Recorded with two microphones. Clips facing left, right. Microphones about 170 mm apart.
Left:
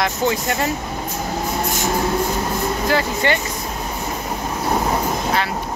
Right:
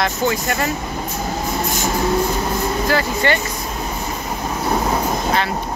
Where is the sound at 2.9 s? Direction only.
20° left (ahead or behind).